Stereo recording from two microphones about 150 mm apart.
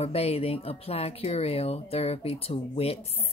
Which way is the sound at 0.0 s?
45° left (ahead or behind).